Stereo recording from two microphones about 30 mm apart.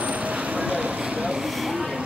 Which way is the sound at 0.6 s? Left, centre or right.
Right.